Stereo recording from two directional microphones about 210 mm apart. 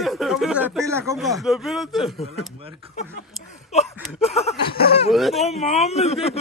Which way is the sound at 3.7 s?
30° left (ahead or behind).